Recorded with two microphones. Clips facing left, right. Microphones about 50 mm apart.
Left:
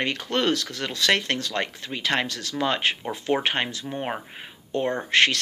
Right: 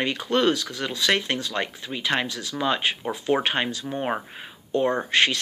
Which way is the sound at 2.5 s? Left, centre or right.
Left.